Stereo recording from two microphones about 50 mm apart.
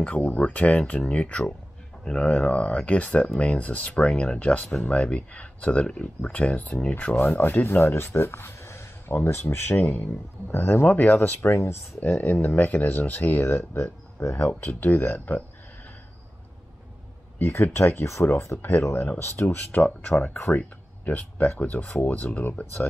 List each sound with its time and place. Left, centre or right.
0.0 s speech: left
7.3 s speech: left
10.9 s speech: left
11.5 s speech: left
12.0 s speech: left
14.2 s speech: left
14.6 s speech: left
17.4 s speech: left
18.6 s speech: left
19.1 s speech: left
19.4 s speech: left